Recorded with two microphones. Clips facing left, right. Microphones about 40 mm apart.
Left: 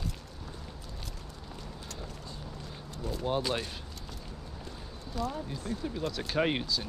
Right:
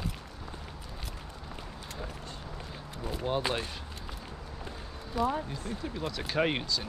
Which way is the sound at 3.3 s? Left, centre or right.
Centre.